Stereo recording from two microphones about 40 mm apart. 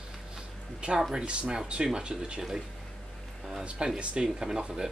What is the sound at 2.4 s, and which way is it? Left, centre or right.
Speech, centre.